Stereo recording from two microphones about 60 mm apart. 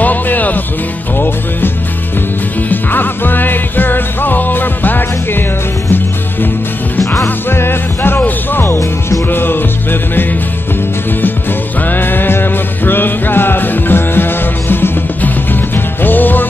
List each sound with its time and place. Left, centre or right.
0.0 s music: left
2.7 s music: left
7.2 s music: left
11.9 s music: left